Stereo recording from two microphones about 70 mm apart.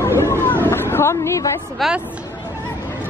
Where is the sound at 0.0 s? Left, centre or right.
Left.